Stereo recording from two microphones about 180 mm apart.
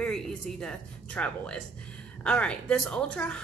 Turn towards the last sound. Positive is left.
turn(degrees=5)  # may be behind; listen again after turning